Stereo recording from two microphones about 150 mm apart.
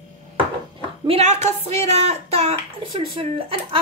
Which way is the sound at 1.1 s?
50° right (ahead or behind).